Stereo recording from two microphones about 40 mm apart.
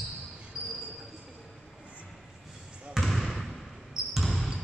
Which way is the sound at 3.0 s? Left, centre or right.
Centre.